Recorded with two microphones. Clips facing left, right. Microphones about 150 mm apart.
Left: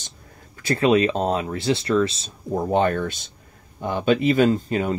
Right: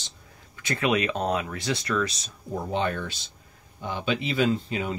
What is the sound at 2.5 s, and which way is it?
Speech, 50° left (ahead or behind).